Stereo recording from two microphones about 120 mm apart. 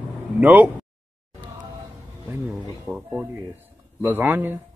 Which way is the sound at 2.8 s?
10° right (ahead or behind).